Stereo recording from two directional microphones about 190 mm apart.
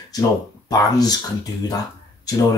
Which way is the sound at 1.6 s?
20° left (ahead or behind).